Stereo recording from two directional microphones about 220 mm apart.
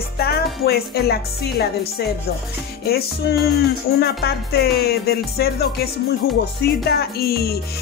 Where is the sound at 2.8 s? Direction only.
45° left (ahead or behind).